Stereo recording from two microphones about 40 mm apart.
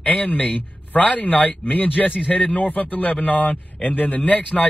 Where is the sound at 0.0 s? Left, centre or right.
Left.